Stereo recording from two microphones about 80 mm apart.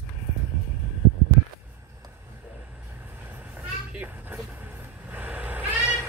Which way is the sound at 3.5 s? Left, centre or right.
Right.